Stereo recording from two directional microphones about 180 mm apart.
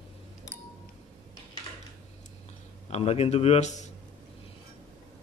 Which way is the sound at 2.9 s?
35° left (ahead or behind).